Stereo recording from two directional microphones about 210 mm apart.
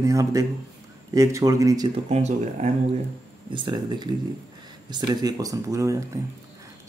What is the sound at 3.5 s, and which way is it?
Speech, 20° right (ahead or behind).